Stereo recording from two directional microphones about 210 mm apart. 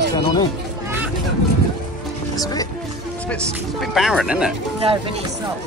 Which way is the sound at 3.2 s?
5° left (ahead or behind).